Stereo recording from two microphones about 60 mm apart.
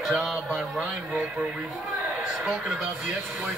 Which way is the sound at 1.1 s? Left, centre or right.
Right.